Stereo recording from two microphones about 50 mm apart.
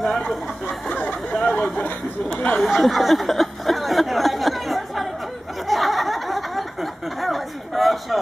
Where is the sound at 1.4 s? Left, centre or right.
Left.